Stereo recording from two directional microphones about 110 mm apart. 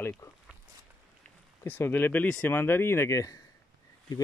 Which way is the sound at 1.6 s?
20° left (ahead or behind).